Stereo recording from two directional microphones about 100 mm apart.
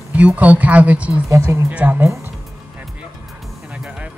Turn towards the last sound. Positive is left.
turn(degrees=-10)  # may be behind; listen again after turning